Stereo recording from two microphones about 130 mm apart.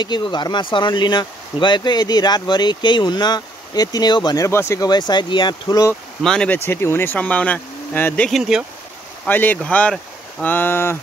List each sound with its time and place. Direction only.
0.0 s speech: 35° left (ahead or behind)
4.5 s speech: 20° left (ahead or behind)
6.2 s speech: 5° left (ahead or behind)
8.3 s speech: centre (ahead or behind)
9.2 s speech: 15° left (ahead or behind)